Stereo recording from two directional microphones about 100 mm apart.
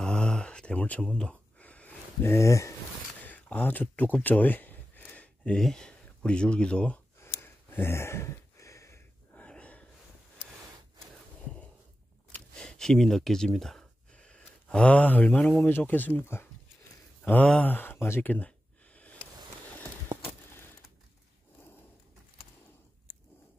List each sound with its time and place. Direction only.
0.0 s a sound: 10° left (ahead or behind)
2.2 s speech: 30° left (ahead or behind)
3.3 s speech: 15° left (ahead or behind)
7.2 s a sound: 25° left (ahead or behind)
9.3 s gasp: 15° left (ahead or behind)
12.5 s speech: 5° left (ahead or behind)